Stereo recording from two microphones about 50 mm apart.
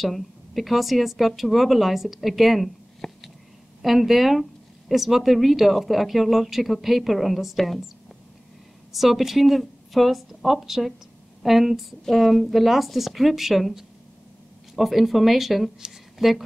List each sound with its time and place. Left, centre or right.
0.0 s speech: centre
3.0 s a sound: centre
3.8 s speech: centre
8.9 s speech: centre